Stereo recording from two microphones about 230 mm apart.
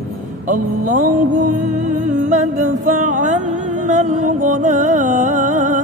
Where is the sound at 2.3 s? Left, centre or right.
Right.